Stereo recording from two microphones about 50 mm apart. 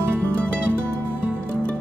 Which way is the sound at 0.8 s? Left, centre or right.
Right.